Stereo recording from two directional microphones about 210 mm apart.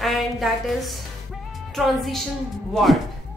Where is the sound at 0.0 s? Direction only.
Centre (ahead or behind).